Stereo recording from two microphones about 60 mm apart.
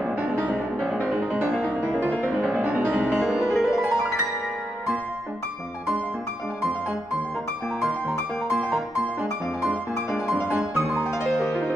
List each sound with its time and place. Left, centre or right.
0.7 s music: centre
2.1 s music: centre
2.4 s music: right
3.3 s music: centre
7.8 s music: centre